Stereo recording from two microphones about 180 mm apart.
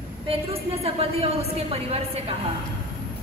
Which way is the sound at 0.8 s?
35° right (ahead or behind).